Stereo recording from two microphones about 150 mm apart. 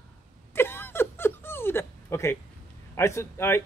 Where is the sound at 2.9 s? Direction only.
20° left (ahead or behind).